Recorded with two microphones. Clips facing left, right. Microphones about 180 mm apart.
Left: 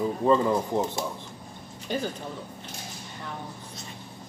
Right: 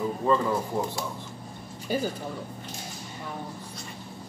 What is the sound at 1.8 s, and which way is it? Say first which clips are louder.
Speech: right 2 dB; 10° right (ahead or behind).